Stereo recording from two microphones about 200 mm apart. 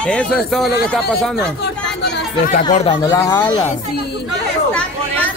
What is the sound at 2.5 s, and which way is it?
Speech, 35° left (ahead or behind).